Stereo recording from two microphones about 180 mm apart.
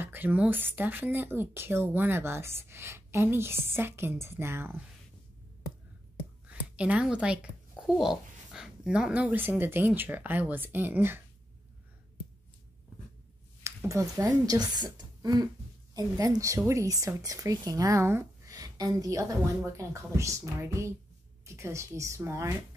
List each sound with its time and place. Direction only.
0.0 s speech: 10° right (ahead or behind)
6.4 s a sound: 5° right (ahead or behind)
8.0 s speech: 5° right (ahead or behind)
13.8 s speech: 20° right (ahead or behind)